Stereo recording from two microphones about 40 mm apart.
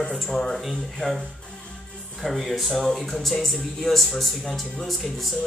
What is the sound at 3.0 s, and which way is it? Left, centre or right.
Speech, centre.